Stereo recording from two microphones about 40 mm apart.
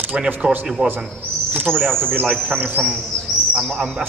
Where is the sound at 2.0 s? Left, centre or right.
Right.